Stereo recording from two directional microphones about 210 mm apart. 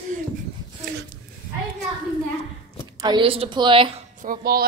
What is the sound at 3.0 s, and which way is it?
A woman's voice, 20° right (ahead or behind).